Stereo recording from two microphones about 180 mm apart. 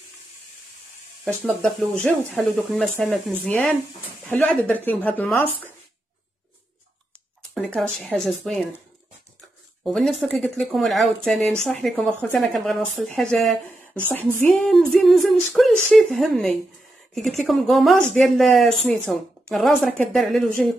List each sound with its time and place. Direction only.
1.2 s a woman's voice: centre (ahead or behind)
7.5 s speech: 5° left (ahead or behind)
9.8 s speech: centre (ahead or behind)